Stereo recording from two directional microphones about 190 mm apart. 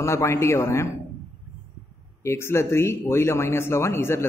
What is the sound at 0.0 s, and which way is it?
Speech, 15° left (ahead or behind).